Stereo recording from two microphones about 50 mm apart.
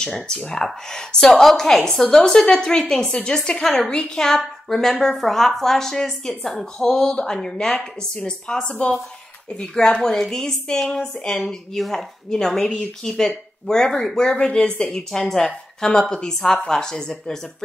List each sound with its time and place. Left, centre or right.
0.0 s a woman's voice: centre
8.6 s speech: left
9.6 s a woman's voice: centre
14.9 s a woman's voice: centre